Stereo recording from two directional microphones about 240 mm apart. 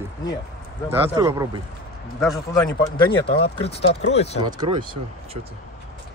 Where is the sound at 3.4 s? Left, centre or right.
Left.